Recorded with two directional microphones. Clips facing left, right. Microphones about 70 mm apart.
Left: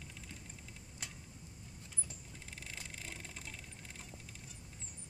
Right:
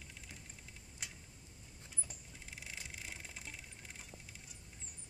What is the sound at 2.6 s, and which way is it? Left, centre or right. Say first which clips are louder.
Vehicle: even; centre.